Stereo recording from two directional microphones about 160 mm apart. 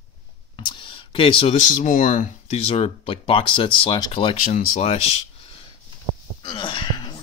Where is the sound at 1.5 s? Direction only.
55° left (ahead or behind); by 4.3 s 30° left (ahead or behind).